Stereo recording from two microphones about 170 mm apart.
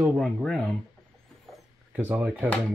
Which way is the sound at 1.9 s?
10° right (ahead or behind).